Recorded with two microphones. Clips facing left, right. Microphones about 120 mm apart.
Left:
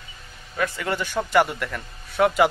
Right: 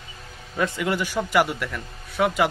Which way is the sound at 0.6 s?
25° right (ahead or behind).